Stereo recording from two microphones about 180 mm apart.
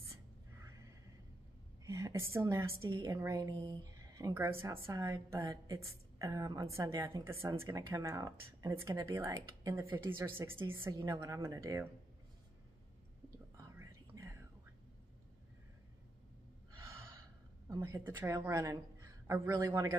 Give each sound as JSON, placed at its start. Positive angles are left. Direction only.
{"t": 0.1, "sound": "a sound", "side_deg": -15}
{"t": 1.9, "sound": "a woman's voice", "side_deg": -15}
{"t": 13.6, "sound": "whispering", "side_deg": -20}
{"t": 17.6, "sound": "a woman's voice", "side_deg": -20}